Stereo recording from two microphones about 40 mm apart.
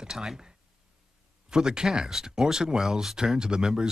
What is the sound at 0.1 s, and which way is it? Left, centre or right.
Speech, centre.